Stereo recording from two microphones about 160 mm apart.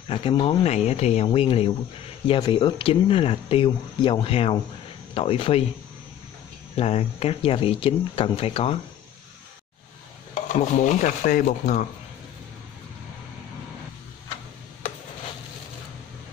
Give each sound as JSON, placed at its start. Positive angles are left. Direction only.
{"t": 0.1, "sound": "speech", "side_deg": 35}
{"t": 6.7, "sound": "speech", "side_deg": 40}
{"t": 10.5, "sound": "speech", "side_deg": 50}